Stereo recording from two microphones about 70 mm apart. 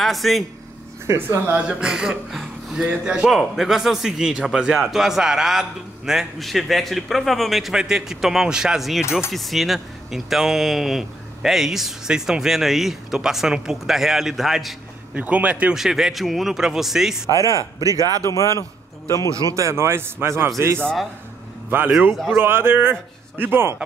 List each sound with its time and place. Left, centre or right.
0.0 s speech: centre
1.0 s speech: right
1.5 s a man's voice: centre
15.1 s a man's voice: right
15.7 s speech: centre
17.3 s speech: right
18.3 s a man's voice: left
19.3 s speech: right
21.6 s a man's voice: right